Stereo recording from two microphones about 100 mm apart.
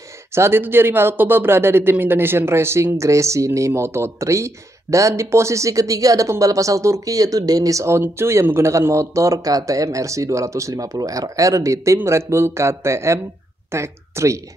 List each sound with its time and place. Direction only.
0.3 s speech: 25° right (ahead or behind)